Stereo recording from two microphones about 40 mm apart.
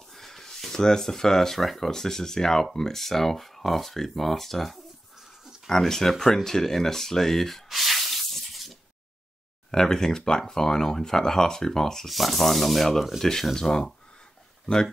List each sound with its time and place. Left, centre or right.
0.1 s speech: centre
9.7 s speech: centre
12.1 s speech: centre